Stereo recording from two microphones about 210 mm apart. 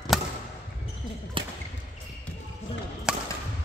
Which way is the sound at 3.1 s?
5° right (ahead or behind).